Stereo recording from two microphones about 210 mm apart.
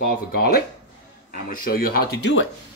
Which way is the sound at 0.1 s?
45° left (ahead or behind).